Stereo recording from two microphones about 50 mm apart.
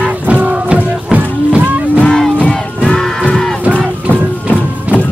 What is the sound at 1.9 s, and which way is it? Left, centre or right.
Music, left.